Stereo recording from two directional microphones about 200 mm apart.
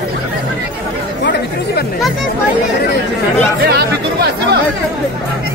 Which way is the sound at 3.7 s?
55° right (ahead or behind).